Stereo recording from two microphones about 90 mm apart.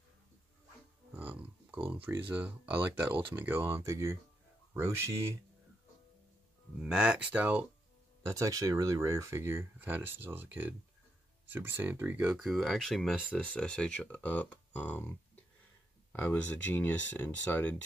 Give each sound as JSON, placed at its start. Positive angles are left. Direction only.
{"t": 1.1, "sound": "a sound", "side_deg": -20}
{"t": 1.9, "sound": "speech", "side_deg": -25}
{"t": 6.8, "sound": "speech", "side_deg": -10}
{"t": 8.2, "sound": "speech", "side_deg": -35}
{"t": 12.4, "sound": "speech", "side_deg": 0}